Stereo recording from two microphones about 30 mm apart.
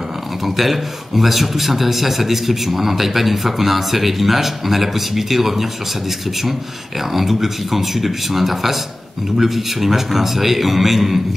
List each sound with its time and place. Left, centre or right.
0.6 s a man's voice: centre